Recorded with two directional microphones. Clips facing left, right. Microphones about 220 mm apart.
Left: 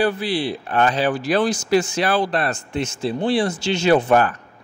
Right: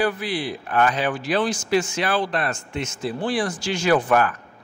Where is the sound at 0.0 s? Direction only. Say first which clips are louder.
Left 3 dB; 30° left (ahead or behind).